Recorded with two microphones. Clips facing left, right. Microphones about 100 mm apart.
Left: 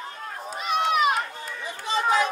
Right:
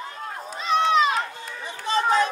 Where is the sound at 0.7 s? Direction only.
30° right (ahead or behind).